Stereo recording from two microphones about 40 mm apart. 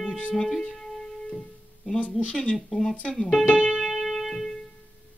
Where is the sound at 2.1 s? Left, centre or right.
Left.